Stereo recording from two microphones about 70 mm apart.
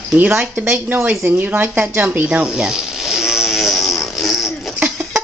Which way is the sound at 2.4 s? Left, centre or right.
Centre.